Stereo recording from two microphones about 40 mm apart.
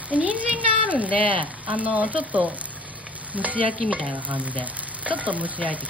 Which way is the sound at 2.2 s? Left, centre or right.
Right.